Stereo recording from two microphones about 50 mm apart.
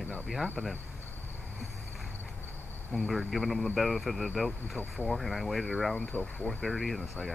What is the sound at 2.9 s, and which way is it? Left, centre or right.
Speech, centre.